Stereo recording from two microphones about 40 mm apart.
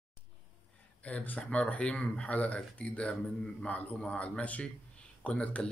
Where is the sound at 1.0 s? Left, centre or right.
Left.